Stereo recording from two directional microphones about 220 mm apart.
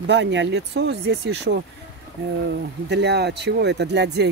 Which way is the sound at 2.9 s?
50° right (ahead or behind).